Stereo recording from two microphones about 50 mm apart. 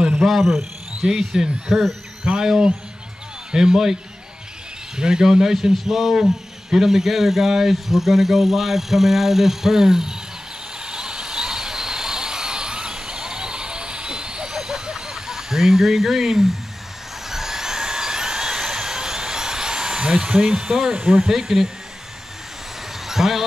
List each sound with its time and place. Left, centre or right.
0.2 s speech: centre
1.0 s a man's voice: centre
3.5 s a man's voice: centre
10.9 s vehicle: centre
20.9 s speech: centre
21.3 s a man's voice: centre
23.0 s speech: centre